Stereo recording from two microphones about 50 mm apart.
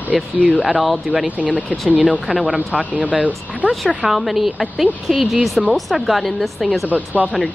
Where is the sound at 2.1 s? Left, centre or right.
Centre.